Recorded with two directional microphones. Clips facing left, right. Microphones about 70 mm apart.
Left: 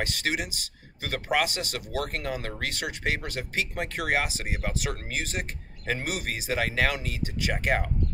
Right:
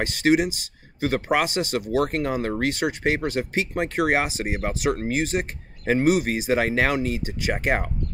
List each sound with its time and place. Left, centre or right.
0.0 s speech: right